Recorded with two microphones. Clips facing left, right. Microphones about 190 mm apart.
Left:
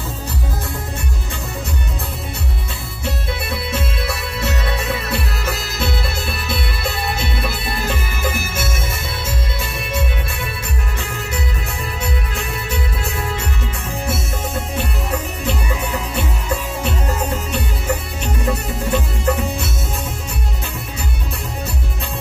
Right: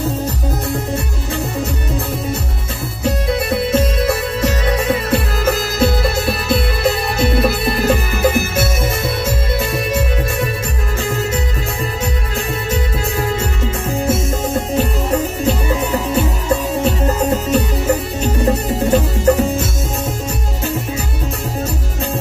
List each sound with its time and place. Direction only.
3.4 s music: 40° right (ahead or behind)
5.8 s music: 45° right (ahead or behind)
14.0 s music: 35° right (ahead or behind)